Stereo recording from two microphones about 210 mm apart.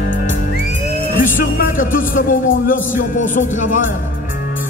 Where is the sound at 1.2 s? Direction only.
40° left (ahead or behind).